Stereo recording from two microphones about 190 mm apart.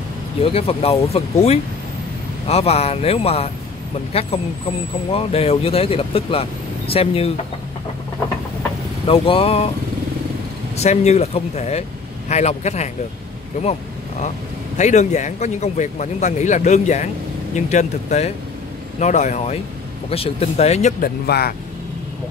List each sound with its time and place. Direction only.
0.4 s a man's voice: 30° left (ahead or behind)
9.0 s speech: 30° left (ahead or behind)
10.8 s a man's voice: 35° left (ahead or behind)
14.8 s a man's voice: 40° left (ahead or behind)
21.0 s speech: 55° left (ahead or behind)